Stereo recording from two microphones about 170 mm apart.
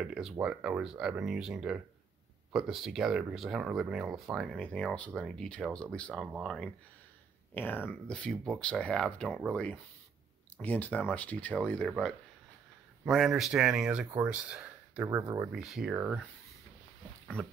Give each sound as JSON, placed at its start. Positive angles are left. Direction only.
{"t": 0.0, "sound": "speech", "side_deg": -5}
{"t": 13.1, "sound": "speech", "side_deg": 0}
{"t": 15.0, "sound": "speech", "side_deg": -20}
{"t": 15.5, "sound": "speech", "side_deg": 0}